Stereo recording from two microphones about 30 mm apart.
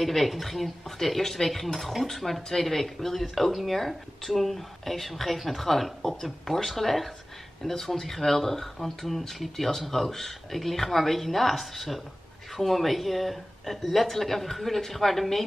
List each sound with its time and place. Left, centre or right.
0.0 s speech: centre